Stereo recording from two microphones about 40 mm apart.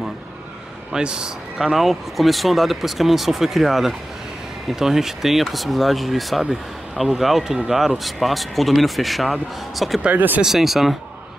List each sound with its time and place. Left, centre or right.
0.9 s speech: centre
1.6 s speech: centre
10.1 s speech: right
10.4 s speech: centre